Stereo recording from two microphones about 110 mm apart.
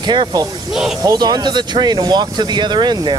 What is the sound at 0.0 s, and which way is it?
Speech, 40° right (ahead or behind).